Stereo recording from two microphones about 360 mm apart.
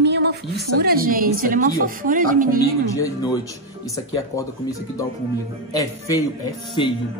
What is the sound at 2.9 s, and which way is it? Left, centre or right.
Speech, centre.